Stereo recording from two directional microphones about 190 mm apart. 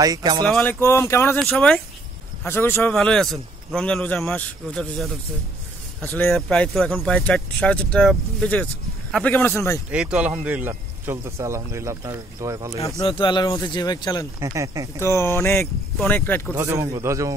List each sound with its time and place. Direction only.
0.0 s speech: 20° right (ahead or behind)
0.5 s speech: 5° left (ahead or behind)
1.4 s a man's voice: centre (ahead or behind)
2.4 s speech: 10° left (ahead or behind)
2.9 s a man's voice: centre (ahead or behind)
9.8 s a man's voice: 5° right (ahead or behind)
13.0 s speech: 25° left (ahead or behind)
14.4 s speech: 15° right (ahead or behind)
15.0 s speech: 15° left (ahead or behind)
16.5 s speech: 15° right (ahead or behind)